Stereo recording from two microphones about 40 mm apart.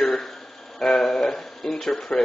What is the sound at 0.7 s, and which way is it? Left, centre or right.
Speech, centre.